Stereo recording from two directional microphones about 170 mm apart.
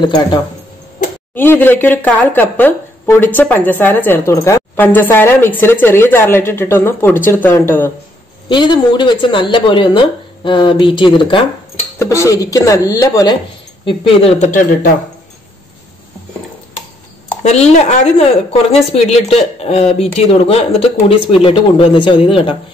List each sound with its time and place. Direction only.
0.0 s speech: 25° left (ahead or behind)
1.3 s speech: 10° left (ahead or behind)
8.5 s speech: 30° left (ahead or behind)
12.0 s speech: 15° left (ahead or behind)
13.8 s speech: 35° left (ahead or behind)
17.4 s a woman's voice: 40° left (ahead or behind)